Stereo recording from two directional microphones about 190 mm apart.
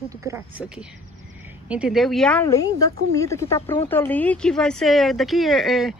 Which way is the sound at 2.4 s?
15° left (ahead or behind).